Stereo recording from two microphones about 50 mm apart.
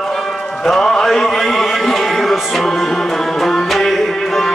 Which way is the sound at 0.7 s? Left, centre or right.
Centre.